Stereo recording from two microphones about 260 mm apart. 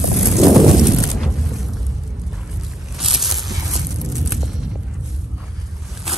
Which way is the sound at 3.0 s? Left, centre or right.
Centre.